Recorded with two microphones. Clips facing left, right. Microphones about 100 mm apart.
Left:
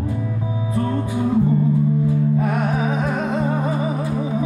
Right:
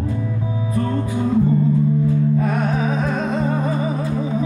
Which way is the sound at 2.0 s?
20° left (ahead or behind).